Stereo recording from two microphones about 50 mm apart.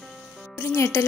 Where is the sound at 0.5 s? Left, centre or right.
Left.